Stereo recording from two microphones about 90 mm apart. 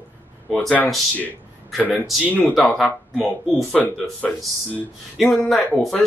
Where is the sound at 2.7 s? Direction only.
5° left (ahead or behind).